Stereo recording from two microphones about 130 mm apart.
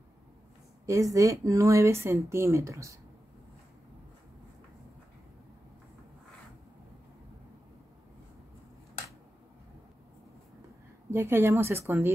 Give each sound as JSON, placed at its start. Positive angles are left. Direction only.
{"t": 0.8, "sound": "speech", "side_deg": -25}
{"t": 11.1, "sound": "speech", "side_deg": -20}